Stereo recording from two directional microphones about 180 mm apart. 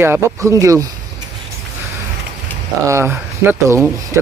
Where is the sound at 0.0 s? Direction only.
15° right (ahead or behind).